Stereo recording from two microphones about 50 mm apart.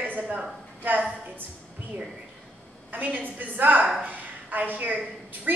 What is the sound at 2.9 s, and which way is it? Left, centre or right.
A woman's voice, right.